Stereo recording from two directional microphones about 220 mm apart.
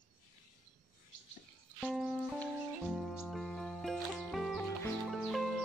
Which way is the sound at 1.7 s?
Centre (ahead or behind).